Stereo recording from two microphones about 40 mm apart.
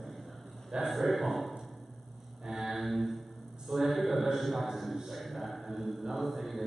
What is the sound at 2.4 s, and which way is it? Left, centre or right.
Mantra, centre.